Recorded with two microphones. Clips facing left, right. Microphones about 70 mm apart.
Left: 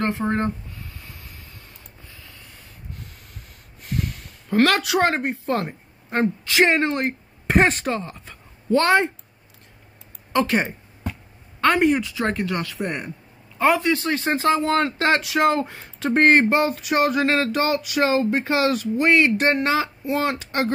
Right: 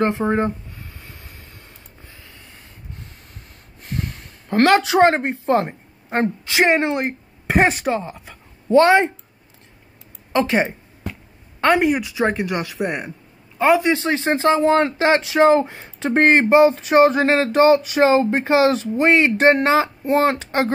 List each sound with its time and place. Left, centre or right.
0.0 s speech: centre
0.9 s vehicle: right
2.2 s a sound: right
3.8 s speech: right
7.4 s speech: centre
8.7 s speech: right
10.3 s speech: right
11.6 s speech: centre
12.0 s speech: centre
13.7 s speech: right